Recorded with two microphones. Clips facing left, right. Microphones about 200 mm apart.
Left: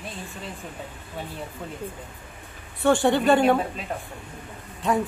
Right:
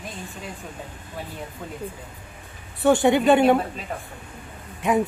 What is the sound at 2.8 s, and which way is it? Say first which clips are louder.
Speech: right 2 dB; 20° right (ahead or behind).